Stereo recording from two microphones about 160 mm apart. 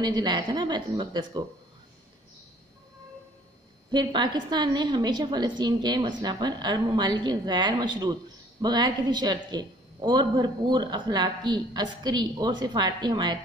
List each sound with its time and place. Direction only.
0.0 s a woman's voice: 25° right (ahead or behind)
3.9 s a woman's voice: 30° right (ahead or behind)